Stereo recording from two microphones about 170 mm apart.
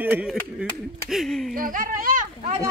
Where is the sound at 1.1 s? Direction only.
Centre (ahead or behind).